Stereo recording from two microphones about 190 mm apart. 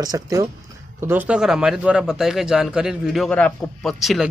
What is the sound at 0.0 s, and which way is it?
A man's voice, 20° right (ahead or behind).